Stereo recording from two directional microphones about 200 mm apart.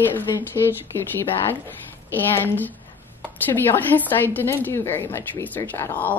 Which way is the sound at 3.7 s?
10° left (ahead or behind).